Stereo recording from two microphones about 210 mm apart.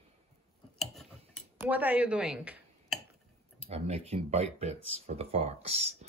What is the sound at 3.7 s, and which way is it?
Speech, 30° right (ahead or behind).